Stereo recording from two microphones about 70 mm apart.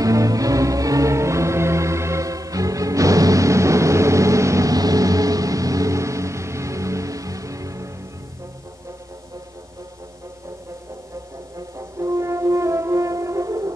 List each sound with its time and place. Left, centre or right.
0.0 s music: right
11.5 s french horn: right